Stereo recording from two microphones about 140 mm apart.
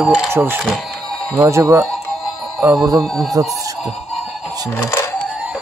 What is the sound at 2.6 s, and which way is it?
Speech, 5° right (ahead or behind).